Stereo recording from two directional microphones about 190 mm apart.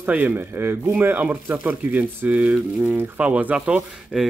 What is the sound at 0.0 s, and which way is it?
Speech, 10° right (ahead or behind).